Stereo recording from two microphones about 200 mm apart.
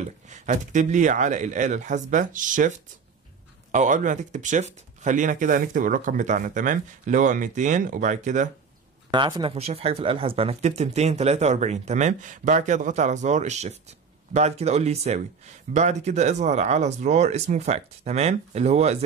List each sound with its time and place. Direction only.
0.3 s speech: 35° right (ahead or behind)
3.7 s speech: 40° right (ahead or behind)
9.1 s speech: 25° right (ahead or behind)